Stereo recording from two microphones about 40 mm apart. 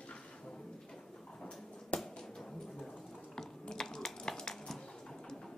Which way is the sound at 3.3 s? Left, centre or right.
Centre.